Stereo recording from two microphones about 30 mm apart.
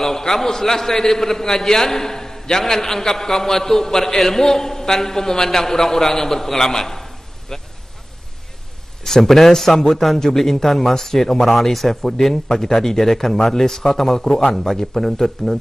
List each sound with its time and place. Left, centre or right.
0.0 s a man's voice: centre
9.0 s a man's voice: centre